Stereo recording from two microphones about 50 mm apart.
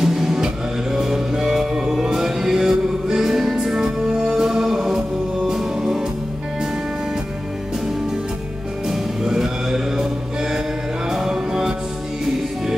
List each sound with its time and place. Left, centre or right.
0.0 s music: centre
8.8 s music: centre
11.1 s music: centre